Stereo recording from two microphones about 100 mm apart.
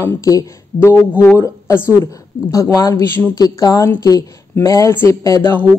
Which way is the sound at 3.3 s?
40° left (ahead or behind).